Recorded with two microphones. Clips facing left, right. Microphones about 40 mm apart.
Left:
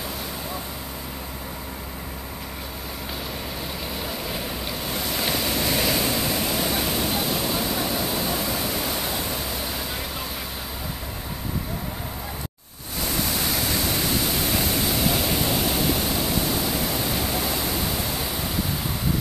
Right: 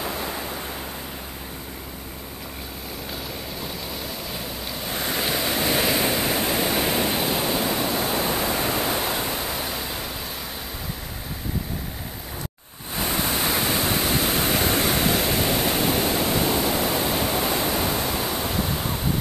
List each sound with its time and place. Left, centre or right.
4.9 s waves: right
5.3 s waves: centre
7.5 s waterfall: centre
8.1 s pink noise: right
13.0 s waves: right
14.2 s pink noise: right
15.5 s pink noise: right